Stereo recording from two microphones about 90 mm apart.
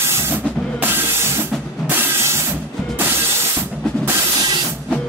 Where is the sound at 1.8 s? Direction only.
30° right (ahead or behind).